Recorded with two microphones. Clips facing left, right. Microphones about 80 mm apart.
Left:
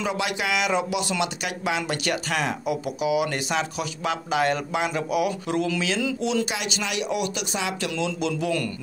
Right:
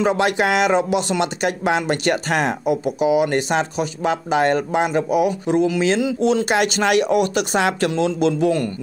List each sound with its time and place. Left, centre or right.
0.0 s speech: right
6.5 s speech: right
7.9 s speech: right